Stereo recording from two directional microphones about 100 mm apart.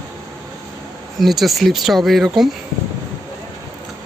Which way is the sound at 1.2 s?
Centre (ahead or behind).